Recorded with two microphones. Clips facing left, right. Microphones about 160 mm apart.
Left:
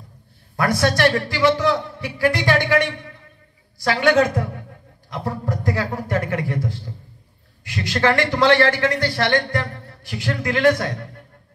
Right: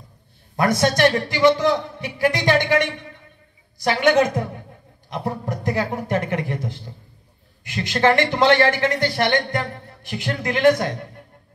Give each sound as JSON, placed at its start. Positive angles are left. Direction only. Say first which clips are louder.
{"t": 0.6, "sound": "a man's voice", "louder": "right 1 dB", "side_deg": -20}